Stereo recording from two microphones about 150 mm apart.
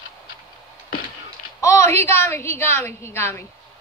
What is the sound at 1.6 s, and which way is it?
A woman's voice, 20° left (ahead or behind).